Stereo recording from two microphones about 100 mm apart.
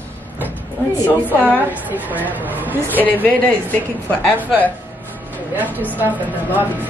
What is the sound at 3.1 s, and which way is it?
A woman's voice, 20° left (ahead or behind).